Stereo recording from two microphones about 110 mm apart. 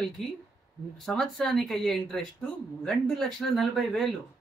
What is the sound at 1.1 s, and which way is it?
Speech, 5° left (ahead or behind).